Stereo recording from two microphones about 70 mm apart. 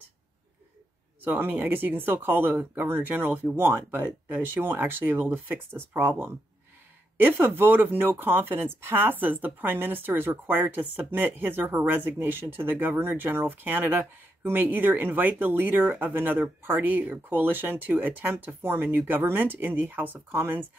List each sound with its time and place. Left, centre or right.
1.2 s speech: right